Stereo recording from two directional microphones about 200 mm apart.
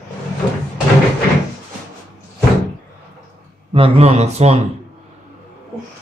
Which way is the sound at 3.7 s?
30° right (ahead or behind).